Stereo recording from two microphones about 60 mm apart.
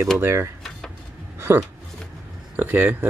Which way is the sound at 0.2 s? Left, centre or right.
Right.